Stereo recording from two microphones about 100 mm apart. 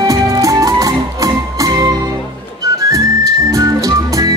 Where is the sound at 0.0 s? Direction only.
35° right (ahead or behind).